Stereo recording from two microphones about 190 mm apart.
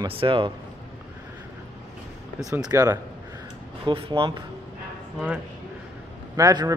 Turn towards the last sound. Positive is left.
turn(degrees=-20)  # may be behind; listen again after turning